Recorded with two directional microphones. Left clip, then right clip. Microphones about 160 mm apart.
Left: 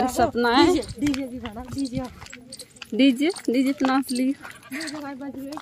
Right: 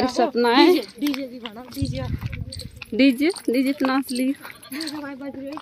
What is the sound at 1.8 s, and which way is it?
Speech, 15° left (ahead or behind).